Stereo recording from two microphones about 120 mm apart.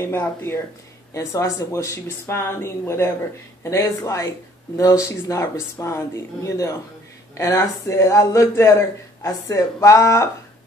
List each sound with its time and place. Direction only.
0.0 s speech: 20° left (ahead or behind)